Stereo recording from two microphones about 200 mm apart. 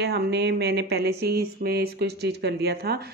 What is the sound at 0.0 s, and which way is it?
Speech, 55° right (ahead or behind).